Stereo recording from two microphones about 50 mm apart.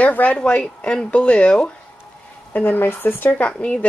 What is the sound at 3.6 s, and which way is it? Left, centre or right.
Speech, left.